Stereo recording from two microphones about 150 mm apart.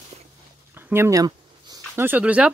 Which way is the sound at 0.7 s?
15° right (ahead or behind).